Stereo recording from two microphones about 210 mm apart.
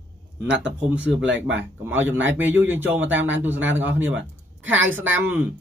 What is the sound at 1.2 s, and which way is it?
Speech, 60° right (ahead or behind).